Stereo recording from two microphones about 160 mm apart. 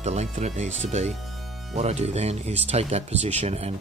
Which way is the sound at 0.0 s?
45° right (ahead or behind).